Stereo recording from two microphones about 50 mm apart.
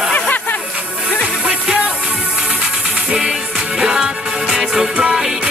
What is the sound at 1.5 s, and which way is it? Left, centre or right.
Music, centre.